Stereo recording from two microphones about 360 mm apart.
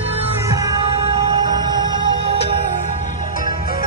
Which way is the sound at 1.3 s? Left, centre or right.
Centre.